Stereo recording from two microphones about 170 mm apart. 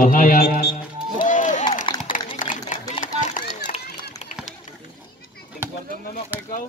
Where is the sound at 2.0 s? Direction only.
50° left (ahead or behind).